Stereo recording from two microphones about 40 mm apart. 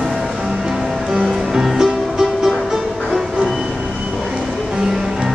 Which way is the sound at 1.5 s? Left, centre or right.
Centre.